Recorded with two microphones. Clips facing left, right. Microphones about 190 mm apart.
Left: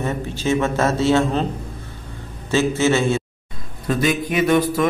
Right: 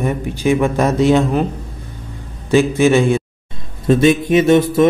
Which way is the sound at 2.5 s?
15° right (ahead or behind).